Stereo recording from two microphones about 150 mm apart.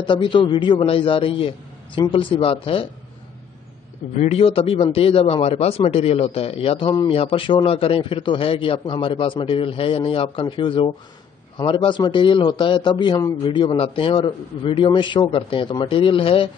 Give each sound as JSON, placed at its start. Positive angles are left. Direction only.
{"t": 0.0, "sound": "a man's voice", "side_deg": 30}
{"t": 4.2, "sound": "a man's voice", "side_deg": 45}